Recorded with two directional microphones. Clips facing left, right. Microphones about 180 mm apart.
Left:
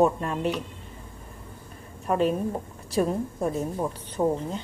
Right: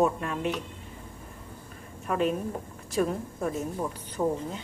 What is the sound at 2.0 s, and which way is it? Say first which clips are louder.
A woman's voice: left 3 dB; 30° left (ahead or behind).